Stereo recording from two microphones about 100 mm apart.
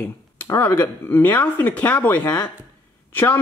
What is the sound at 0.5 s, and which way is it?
Speech, 25° left (ahead or behind).